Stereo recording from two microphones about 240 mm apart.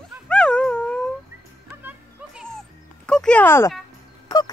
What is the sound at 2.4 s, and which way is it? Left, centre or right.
Music, centre.